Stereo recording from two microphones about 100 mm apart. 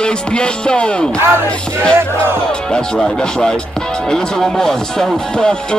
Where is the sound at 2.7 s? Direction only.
5° left (ahead or behind).